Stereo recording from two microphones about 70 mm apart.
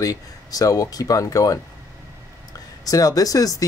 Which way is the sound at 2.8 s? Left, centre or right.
Left.